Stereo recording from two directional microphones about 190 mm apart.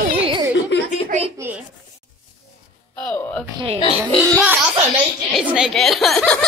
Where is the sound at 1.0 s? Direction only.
35° right (ahead or behind).